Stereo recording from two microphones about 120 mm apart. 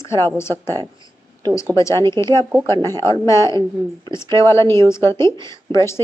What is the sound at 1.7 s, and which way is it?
A woman's voice, 25° left (ahead or behind).